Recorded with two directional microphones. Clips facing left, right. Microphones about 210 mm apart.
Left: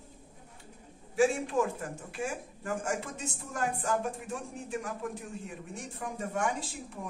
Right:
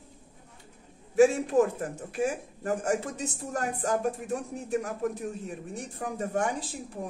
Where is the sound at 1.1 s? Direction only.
40° right (ahead or behind).